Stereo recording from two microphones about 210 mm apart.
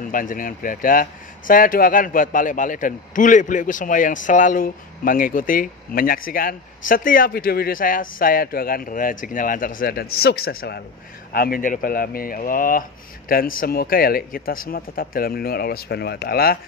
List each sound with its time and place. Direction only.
0.0 s a man's voice: 40° left (ahead or behind)